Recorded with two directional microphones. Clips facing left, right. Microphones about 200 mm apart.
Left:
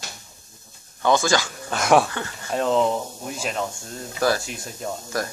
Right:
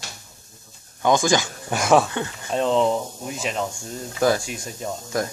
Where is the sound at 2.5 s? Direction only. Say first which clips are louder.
Right 1 dB; 5° left (ahead or behind).